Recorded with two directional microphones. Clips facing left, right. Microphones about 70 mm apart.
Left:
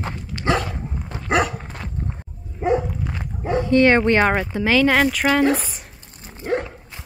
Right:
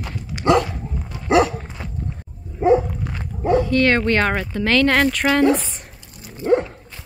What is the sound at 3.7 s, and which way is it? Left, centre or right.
Speech, centre.